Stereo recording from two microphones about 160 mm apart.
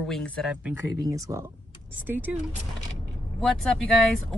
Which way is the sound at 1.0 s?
20° right (ahead or behind).